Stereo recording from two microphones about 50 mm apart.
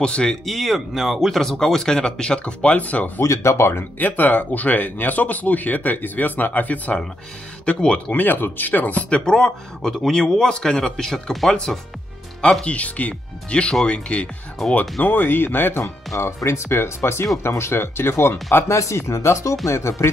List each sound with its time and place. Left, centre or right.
0.0 s speech: centre
0.5 s speech: centre; by 3.1 s left
3.2 s speech: left
4.0 s speech: left
8.1 s speech: left
9.2 s speech: centre
12.6 s speech: left
16.1 s speech: left
18.7 s speech: left
19.7 s speech: left